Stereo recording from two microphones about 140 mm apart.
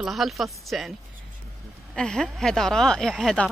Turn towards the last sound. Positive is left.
turn(degrees=5)  # may be behind; listen again after turning